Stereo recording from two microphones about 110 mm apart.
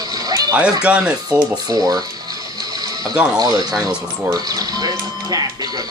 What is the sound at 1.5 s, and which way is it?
Speech, 35° right (ahead or behind).